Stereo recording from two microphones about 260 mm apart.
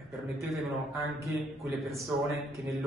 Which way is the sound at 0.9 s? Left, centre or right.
Centre.